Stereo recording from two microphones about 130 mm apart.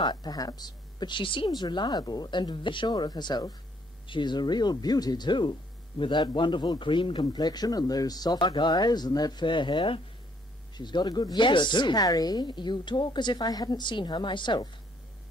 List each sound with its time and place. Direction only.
0.0 s speech: 30° left (ahead or behind)